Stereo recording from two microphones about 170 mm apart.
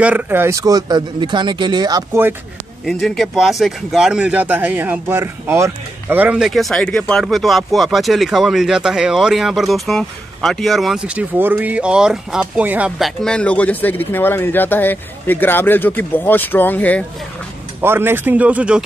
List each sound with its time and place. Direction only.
0.0 s speech: 10° right (ahead or behind)
2.8 s speech: centre (ahead or behind)
13.2 s speech: 5° left (ahead or behind)
17.7 s speech: 15° right (ahead or behind)